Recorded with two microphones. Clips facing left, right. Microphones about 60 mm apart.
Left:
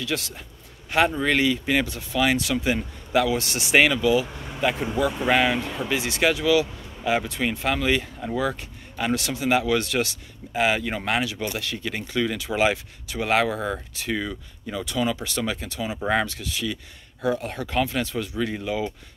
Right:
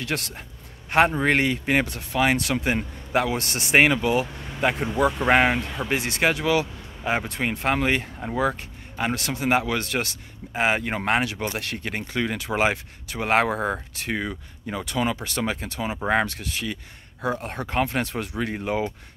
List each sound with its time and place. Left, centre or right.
0.0 s speech: right
0.9 s speech: right
4.3 s vehicle: centre
5.3 s speech: right
5.6 s speech: centre
5.9 s speech: right
8.3 s speech: right
9.1 s speech: right
11.9 s speech: right
16.0 s speech: right
16.3 s speech: right
18.0 s speech: right